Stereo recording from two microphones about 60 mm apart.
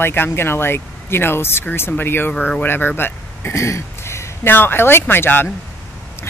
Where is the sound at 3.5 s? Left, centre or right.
Left.